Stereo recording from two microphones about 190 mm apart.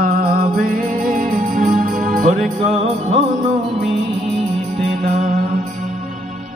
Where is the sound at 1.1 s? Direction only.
45° right (ahead or behind).